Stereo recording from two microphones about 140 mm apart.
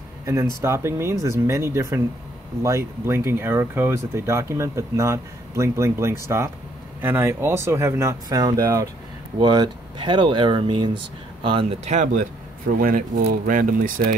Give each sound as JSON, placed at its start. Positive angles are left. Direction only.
{"t": 0.2, "sound": "speech", "side_deg": -20}
{"t": 11.8, "sound": "speech", "side_deg": -60}
{"t": 12.7, "sound": "speech", "side_deg": -90}